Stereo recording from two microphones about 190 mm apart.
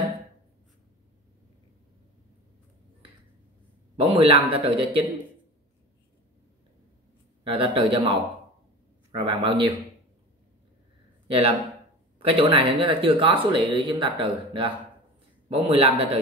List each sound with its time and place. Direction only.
3.9 s speech: 30° right (ahead or behind)
7.4 s a man's voice: 25° right (ahead or behind)
11.2 s speech: 30° right (ahead or behind)